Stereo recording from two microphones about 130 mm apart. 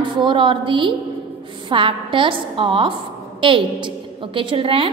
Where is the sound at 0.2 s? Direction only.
40° right (ahead or behind).